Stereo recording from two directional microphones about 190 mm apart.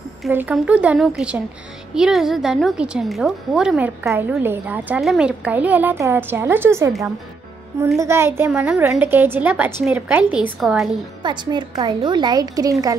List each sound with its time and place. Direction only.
0.3 s a woman's voice: 10° right (ahead or behind)
8.0 s a woman's voice: 15° right (ahead or behind)
11.2 s a woman's voice: 25° right (ahead or behind)